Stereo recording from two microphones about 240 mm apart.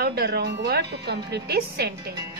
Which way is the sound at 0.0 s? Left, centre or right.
Right.